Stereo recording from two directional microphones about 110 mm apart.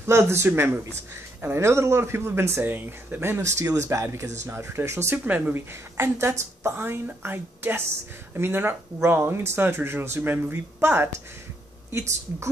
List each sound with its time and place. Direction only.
0.0 s speech: 25° right (ahead or behind)